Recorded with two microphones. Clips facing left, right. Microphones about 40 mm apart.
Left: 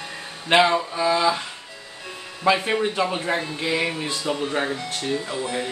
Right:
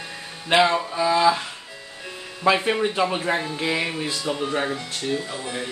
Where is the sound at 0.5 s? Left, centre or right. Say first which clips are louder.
Left 1 dB; centre.